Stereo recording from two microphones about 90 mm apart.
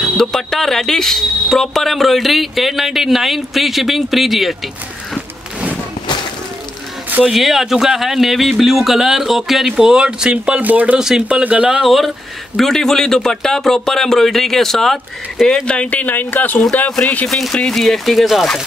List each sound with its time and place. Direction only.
0.2 s speech: 5° left (ahead or behind)
7.2 s speech: centre (ahead or behind)
11.8 s speech: centre (ahead or behind)
15.6 s speech: 10° left (ahead or behind)